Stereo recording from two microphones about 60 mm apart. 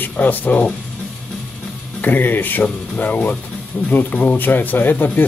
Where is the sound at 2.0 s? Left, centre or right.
Left.